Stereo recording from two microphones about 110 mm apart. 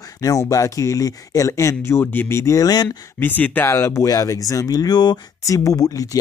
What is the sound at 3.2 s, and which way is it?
Speech, 15° left (ahead or behind).